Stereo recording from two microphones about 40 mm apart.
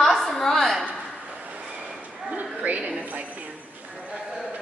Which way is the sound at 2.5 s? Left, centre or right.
Right.